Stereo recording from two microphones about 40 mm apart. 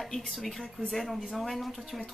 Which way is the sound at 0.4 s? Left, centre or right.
Centre.